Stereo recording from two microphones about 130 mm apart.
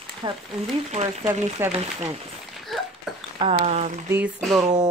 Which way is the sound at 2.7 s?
Centre (ahead or behind).